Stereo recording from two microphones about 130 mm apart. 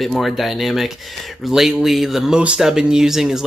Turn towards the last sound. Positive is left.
turn(degrees=-5)  # may be behind; listen again after turning